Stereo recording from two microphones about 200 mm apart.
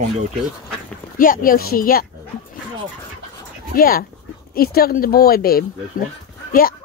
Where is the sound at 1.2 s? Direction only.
45° left (ahead or behind).